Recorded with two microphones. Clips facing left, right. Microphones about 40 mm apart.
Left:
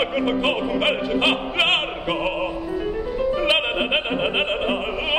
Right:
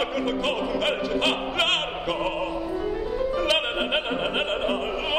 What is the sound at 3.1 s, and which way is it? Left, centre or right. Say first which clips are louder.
Music: left 4 dB; left.